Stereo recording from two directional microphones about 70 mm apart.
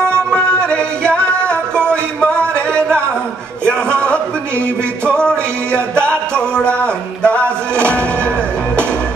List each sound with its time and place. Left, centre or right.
0.0 s music: centre
3.6 s a sound: centre
5.0 s music: centre